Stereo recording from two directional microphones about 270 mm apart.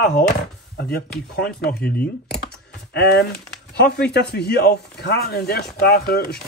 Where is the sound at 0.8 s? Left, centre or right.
Left.